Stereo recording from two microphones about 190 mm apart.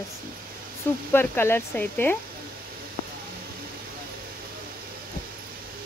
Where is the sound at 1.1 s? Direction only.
10° left (ahead or behind).